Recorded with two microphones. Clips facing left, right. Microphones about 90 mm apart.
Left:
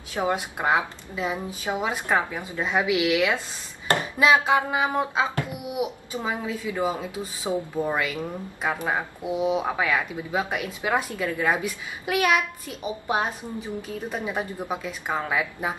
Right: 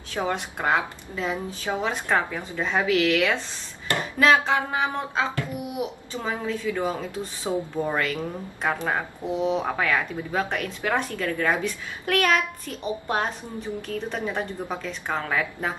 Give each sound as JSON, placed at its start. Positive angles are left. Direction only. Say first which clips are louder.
{"t": 0.1, "sound": "speech", "louder": "left 2 dB", "side_deg": 10}